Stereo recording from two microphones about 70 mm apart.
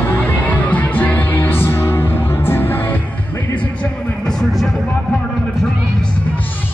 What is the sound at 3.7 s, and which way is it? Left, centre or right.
Music, centre.